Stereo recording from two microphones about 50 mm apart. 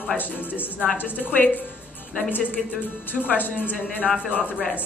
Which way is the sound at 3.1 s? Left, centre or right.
Left.